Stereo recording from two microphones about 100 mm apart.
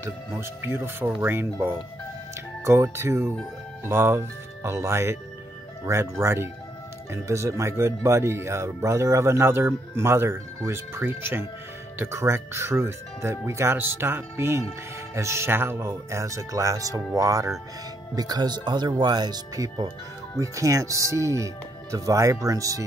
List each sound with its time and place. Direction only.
0.0 s speech: 25° right (ahead or behind)